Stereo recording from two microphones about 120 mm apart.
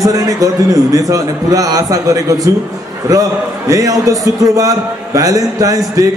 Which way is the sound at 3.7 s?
30° right (ahead or behind).